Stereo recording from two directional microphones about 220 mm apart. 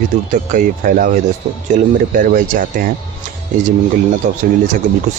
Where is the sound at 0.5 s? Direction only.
40° right (ahead or behind).